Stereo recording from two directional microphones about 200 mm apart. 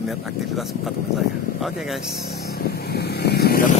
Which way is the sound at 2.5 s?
55° left (ahead or behind).